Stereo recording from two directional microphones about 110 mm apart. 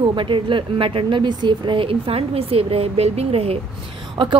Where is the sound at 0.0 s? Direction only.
50° right (ahead or behind).